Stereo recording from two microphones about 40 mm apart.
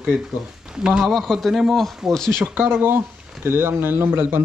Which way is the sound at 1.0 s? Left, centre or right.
Centre.